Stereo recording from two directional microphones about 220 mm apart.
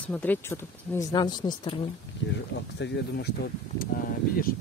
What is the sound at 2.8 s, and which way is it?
Speech, 50° left (ahead or behind).